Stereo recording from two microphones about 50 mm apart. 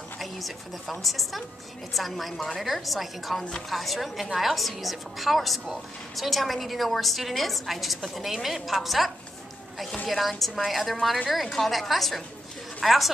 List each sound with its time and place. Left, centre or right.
0.2 s a woman's voice: centre